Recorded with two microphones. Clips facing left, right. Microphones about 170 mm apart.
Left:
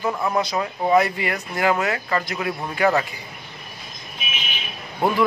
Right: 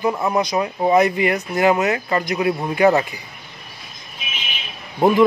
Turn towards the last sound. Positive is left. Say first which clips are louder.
# right 6 dB
turn(degrees=-20)  # may be behind; listen again after turning